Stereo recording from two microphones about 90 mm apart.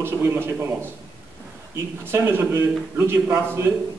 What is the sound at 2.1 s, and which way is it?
A man's voice, 25° right (ahead or behind).